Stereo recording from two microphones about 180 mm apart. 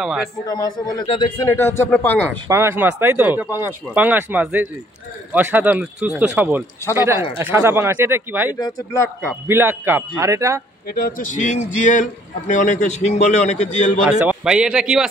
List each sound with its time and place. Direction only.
0.0 s a man's voice: 5° right (ahead or behind)
0.5 s a man's voice: 20° left (ahead or behind)
1.4 s speech: 15° left (ahead or behind)
2.4 s speech: 15° right (ahead or behind)
8.5 s a man's voice: 20° left (ahead or behind)
9.5 s speech: 10° right (ahead or behind)
10.9 s a man's voice: 55° left (ahead or behind); by 13.9 s 40° left (ahead or behind)
14.0 s a man's voice: 5° right (ahead or behind)